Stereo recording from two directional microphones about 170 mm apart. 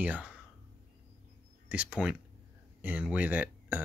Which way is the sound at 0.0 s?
10° right (ahead or behind).